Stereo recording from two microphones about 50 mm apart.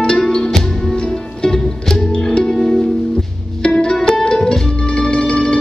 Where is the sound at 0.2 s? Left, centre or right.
Centre.